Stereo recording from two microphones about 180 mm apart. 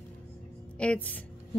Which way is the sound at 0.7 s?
5° left (ahead or behind).